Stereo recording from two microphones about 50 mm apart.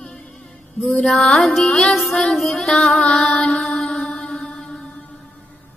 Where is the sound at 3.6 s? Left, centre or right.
Centre.